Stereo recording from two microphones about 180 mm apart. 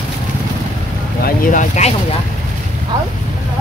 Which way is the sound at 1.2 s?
50° left (ahead or behind).